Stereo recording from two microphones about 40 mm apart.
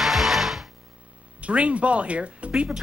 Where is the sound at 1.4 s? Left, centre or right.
Right.